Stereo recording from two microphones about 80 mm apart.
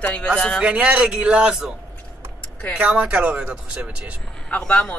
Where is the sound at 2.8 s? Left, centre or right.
Centre.